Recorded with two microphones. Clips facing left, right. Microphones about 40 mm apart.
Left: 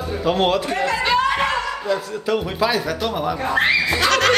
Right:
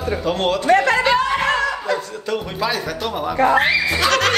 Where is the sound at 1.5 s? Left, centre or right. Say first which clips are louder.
Right 2 dB; right.